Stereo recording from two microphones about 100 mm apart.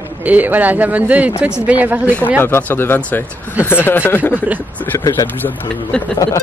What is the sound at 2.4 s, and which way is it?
Speech, 20° left (ahead or behind).